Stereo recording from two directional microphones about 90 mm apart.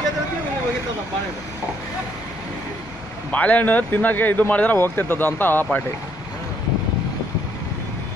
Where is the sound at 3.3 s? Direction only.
15° left (ahead or behind).